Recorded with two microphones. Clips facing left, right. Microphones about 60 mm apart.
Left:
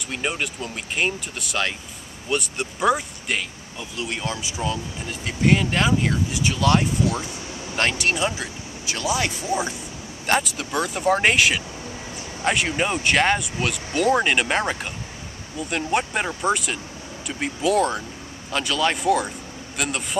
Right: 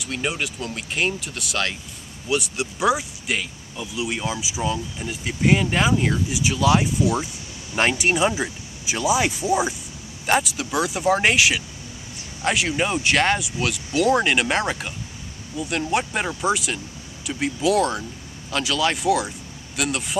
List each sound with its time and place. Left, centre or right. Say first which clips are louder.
0.0 s speech: even; centre
10.2 s speech: right 1 dB; centre